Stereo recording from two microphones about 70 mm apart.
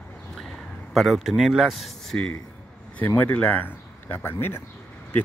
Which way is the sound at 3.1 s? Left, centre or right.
Left.